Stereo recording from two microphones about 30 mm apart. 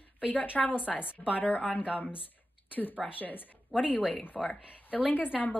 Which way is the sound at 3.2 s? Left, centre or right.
Left.